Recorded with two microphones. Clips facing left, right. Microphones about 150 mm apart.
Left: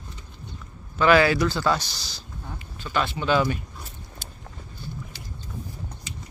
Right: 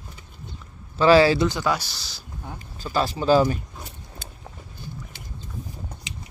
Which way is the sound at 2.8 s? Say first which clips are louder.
Right 2 dB; 35° right (ahead or behind).